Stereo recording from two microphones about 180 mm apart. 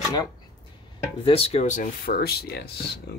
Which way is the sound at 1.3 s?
35° left (ahead or behind).